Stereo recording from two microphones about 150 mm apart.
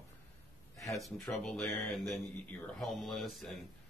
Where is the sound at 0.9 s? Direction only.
Centre (ahead or behind).